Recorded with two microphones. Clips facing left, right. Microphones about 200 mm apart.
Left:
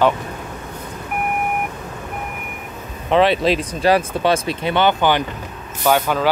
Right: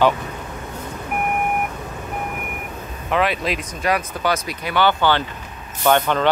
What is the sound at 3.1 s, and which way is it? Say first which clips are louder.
Speech: left 6 dB; 30° left (ahead or behind).